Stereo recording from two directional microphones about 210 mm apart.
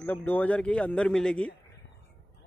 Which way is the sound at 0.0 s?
10° left (ahead or behind).